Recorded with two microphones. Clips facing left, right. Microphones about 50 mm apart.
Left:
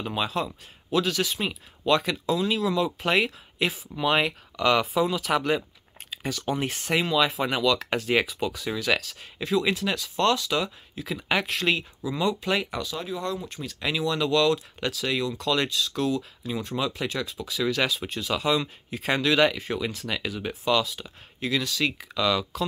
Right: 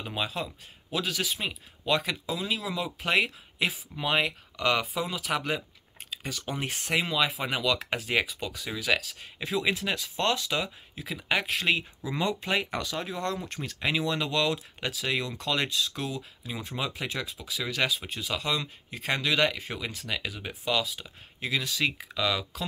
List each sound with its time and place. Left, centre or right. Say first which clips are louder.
0.0 s speech: left 5 dB; centre
8.1 s speech: left 4 dB; centre
9.4 s speech: left 4 dB; centre
11.1 s speech: left 2 dB; centre
11.5 s speech: left 1 dB; centre
12.0 s speech: left 3 dB; right
12.9 s speech: left 1 dB; right
13.7 s speech: left 2 dB; right; by 18.4 s centre
18.4 s speech: left 6 dB; centre